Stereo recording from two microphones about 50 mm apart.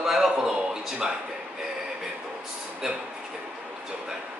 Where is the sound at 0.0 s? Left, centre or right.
Centre.